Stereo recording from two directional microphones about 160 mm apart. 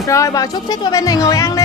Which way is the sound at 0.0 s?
20° left (ahead or behind).